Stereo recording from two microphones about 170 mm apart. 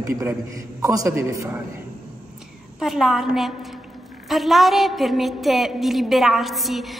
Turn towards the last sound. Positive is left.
turn(degrees=0)  # may be behind; listen again after turning